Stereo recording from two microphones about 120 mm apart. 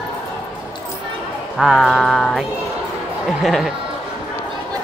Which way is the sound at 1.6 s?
Centre (ahead or behind).